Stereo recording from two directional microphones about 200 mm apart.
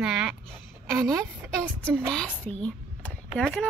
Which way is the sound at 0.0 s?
5° right (ahead or behind).